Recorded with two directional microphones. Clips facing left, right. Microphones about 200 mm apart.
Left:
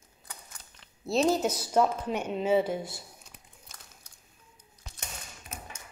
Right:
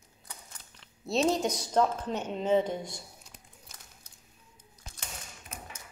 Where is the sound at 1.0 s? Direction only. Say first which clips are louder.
Left 2 dB; centre (ahead or behind).